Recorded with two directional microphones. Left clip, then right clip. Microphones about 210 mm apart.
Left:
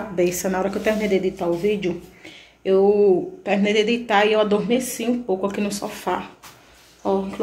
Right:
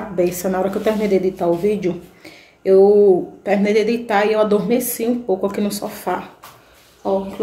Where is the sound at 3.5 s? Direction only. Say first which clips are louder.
Right 3 dB; centre (ahead or behind).